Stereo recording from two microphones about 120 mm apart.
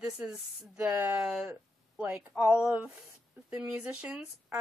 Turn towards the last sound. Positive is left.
turn(degrees=-5)  # may be behind; listen again after turning